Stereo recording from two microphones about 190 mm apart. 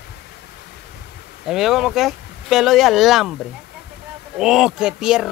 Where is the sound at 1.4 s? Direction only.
Centre (ahead or behind).